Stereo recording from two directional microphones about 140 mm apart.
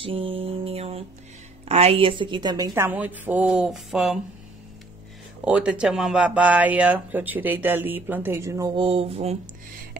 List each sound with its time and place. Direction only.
0.0 s music: 40° right (ahead or behind)
1.7 s speech: 45° right (ahead or behind); by 4.2 s centre (ahead or behind)
5.4 s speech: 10° right (ahead or behind)
8.7 s mantra: 45° right (ahead or behind)